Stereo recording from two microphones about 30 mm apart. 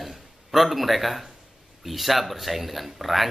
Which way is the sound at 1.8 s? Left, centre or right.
Centre.